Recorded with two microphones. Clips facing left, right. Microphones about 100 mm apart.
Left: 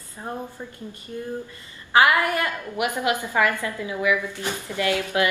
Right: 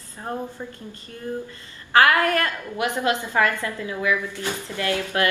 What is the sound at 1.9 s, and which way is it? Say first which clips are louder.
A woman's voice: right 1 dB; 15° left (ahead or behind).